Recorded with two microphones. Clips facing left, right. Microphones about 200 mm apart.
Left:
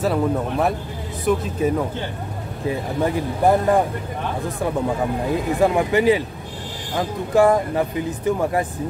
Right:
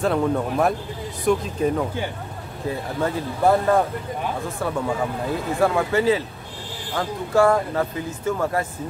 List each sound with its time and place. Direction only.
0.0 s speech: 5° left (ahead or behind)
2.7 s speech: 15° left (ahead or behind)
5.3 s speech: 20° left (ahead or behind)